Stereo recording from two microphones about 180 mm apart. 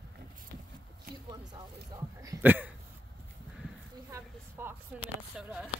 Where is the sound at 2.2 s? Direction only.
10° right (ahead or behind).